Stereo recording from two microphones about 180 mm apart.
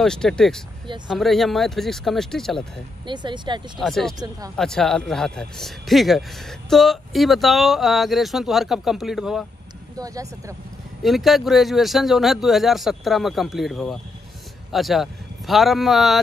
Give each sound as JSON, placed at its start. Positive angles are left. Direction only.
{"t": 0.0, "sound": "speech", "side_deg": 5}
{"t": 3.1, "sound": "speech", "side_deg": -25}
{"t": 3.8, "sound": "speech", "side_deg": 0}
{"t": 9.9, "sound": "speech", "side_deg": -20}
{"t": 11.0, "sound": "speech", "side_deg": 0}